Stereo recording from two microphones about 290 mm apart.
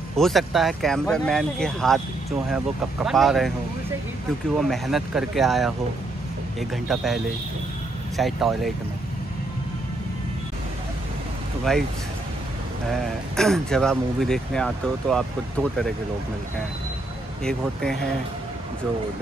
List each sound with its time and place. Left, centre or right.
0.1 s speech: centre
4.6 s speech: centre
6.7 s speech: centre
8.2 s speech: centre
11.7 s speech: centre
12.9 s speech: centre
17.4 s speech: centre